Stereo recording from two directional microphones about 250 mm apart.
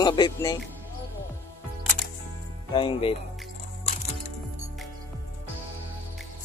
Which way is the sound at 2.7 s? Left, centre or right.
Centre.